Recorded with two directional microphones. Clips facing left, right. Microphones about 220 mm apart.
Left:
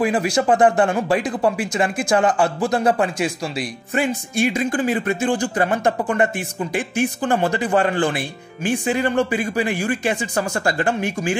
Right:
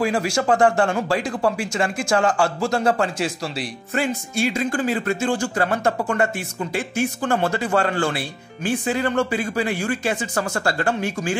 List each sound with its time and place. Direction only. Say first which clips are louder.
0.0 s speech: left 2 dB; 20° left (ahead or behind)